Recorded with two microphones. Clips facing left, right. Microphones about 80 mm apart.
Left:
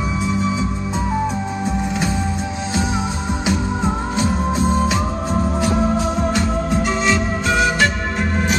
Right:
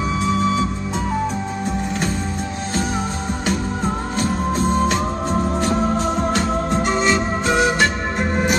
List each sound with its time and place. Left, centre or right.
4.5 s music: centre